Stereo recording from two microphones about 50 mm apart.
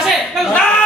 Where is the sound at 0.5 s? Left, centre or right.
Centre.